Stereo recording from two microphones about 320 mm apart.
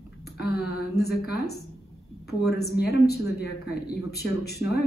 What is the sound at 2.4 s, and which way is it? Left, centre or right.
Speech, left.